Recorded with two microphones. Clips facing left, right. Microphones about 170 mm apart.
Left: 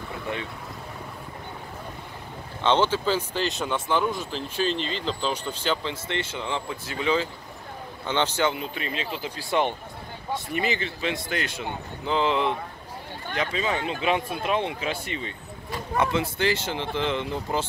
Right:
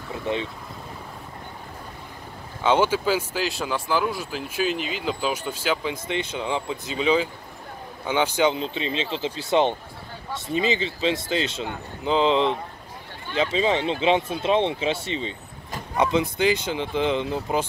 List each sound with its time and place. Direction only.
2.6 s speech: 10° right (ahead or behind)